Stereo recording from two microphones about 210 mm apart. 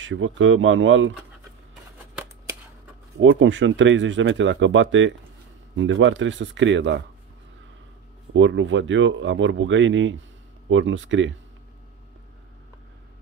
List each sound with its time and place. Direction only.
0.0 s speech: 65° right (ahead or behind)
3.2 s speech: 65° right (ahead or behind)
8.3 s speech: 65° right (ahead or behind)